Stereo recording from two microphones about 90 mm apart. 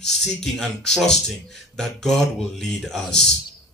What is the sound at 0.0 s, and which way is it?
Speech, 5° left (ahead or behind).